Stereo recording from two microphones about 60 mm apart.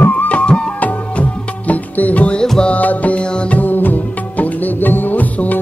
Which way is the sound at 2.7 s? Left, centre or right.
Left.